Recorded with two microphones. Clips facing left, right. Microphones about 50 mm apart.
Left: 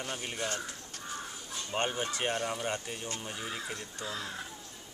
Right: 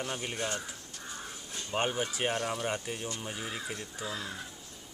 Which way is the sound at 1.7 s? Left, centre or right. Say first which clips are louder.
Right 1 dB; centre.